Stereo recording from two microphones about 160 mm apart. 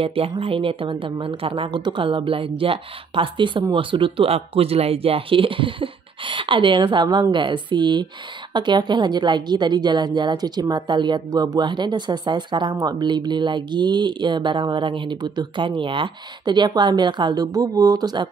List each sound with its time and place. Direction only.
0.0 s speech: 35° right (ahead or behind)